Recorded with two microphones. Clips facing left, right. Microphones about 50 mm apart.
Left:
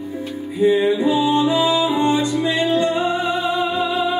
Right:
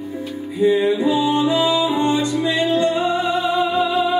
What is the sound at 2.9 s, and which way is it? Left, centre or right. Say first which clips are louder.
Music: right 1 dB; centre.